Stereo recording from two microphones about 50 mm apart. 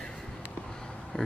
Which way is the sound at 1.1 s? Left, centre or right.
Centre.